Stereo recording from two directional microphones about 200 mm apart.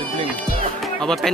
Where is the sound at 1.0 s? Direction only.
Centre (ahead or behind).